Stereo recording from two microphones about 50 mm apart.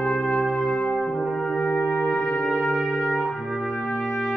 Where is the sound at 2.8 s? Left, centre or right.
Centre.